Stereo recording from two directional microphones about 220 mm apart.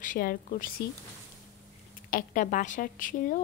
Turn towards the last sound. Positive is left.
turn(degrees=40)  # may be behind; listen again after turning